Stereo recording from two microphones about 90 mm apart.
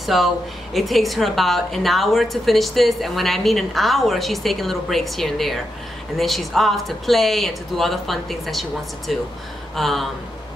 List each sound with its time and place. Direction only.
0.0 s a woman's voice: centre (ahead or behind)